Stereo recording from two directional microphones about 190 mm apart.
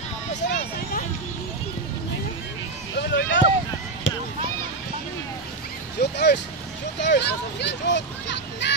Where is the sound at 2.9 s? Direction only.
70° left (ahead or behind).